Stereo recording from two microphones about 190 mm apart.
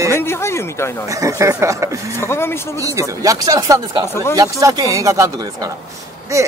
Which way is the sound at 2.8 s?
15° right (ahead or behind).